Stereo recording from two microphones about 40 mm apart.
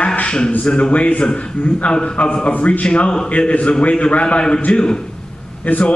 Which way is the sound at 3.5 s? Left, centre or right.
Left.